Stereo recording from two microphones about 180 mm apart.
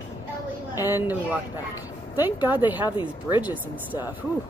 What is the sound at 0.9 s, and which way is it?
Speech, 10° right (ahead or behind).